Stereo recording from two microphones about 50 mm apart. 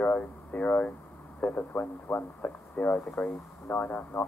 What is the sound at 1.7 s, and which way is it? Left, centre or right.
Speech, left.